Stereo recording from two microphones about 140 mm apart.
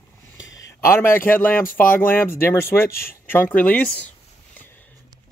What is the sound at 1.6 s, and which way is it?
Speech, 80° left.